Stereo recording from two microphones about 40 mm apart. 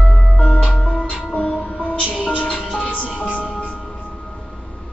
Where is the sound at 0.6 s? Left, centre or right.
Left.